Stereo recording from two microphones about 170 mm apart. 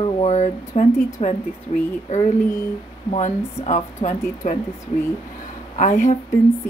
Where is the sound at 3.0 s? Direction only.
40° left (ahead or behind).